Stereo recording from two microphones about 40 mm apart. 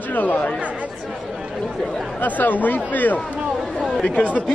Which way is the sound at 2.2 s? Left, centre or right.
Left.